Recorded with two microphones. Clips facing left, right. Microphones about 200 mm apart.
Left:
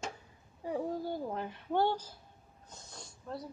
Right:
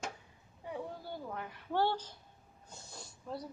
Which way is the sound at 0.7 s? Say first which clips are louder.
Left 7 dB; 40° left (ahead or behind).